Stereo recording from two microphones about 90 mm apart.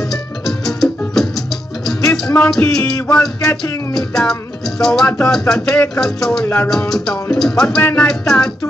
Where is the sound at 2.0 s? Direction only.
40° left (ahead or behind).